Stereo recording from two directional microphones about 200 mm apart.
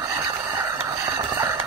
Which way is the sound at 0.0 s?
15° right (ahead or behind).